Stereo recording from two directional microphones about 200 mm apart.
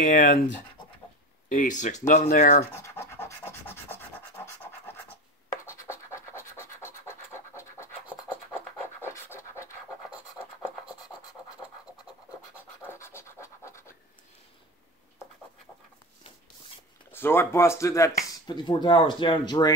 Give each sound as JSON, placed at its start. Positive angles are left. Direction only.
{"t": 0.0, "sound": "speech", "side_deg": 40}
{"t": 1.5, "sound": "speech", "side_deg": 40}
{"t": 2.6, "sound": "scratch", "side_deg": 10}
{"t": 5.7, "sound": "scratch", "side_deg": 15}
{"t": 9.0, "sound": "scratch", "side_deg": 15}
{"t": 12.8, "sound": "scratch", "side_deg": 15}
{"t": 17.1, "sound": "speech", "side_deg": 10}